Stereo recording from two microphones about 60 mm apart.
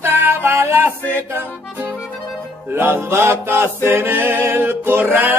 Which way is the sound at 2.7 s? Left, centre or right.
Right.